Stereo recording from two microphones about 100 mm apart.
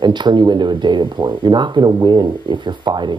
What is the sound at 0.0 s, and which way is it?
Speech, 50° right (ahead or behind).